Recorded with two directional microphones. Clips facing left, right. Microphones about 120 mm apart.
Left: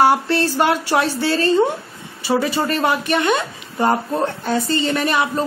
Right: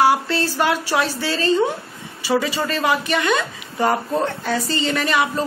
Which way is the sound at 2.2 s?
30° left (ahead or behind).